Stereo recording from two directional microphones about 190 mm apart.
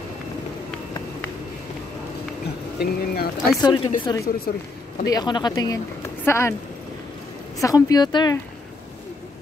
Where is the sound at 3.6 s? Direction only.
25° left (ahead or behind).